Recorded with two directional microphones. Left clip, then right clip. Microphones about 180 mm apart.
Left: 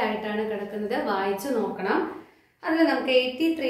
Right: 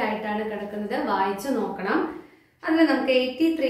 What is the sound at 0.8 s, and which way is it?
A woman's voice, 25° left (ahead or behind).